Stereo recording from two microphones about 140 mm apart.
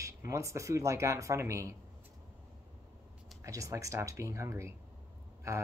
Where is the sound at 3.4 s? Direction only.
20° right (ahead or behind).